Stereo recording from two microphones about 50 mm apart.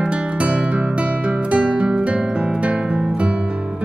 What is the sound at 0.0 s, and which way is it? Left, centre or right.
Music, right.